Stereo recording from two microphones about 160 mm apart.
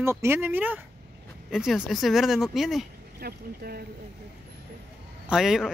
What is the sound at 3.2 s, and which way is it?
Speech, 70° right (ahead or behind).